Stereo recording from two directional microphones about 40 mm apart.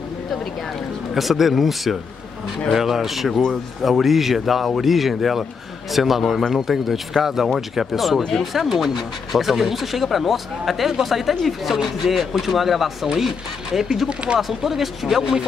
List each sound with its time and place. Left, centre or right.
1.1 s speech: centre
13.0 s speech: centre
14.0 s a sound: right
14.5 s speech: centre